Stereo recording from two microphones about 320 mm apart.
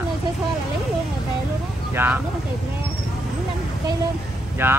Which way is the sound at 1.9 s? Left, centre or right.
Centre.